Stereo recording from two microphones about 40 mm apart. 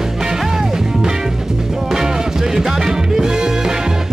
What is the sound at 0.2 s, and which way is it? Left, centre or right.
Music, centre.